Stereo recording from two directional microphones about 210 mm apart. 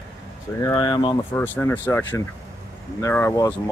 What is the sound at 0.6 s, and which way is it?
Speech, 20° left (ahead or behind).